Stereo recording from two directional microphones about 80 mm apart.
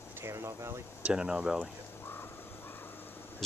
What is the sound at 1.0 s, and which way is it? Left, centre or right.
Speech, centre.